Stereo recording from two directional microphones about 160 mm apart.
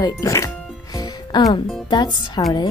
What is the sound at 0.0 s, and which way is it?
Music, 20° left (ahead or behind).